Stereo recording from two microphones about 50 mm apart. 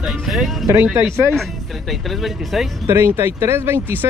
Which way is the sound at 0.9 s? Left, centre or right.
Right.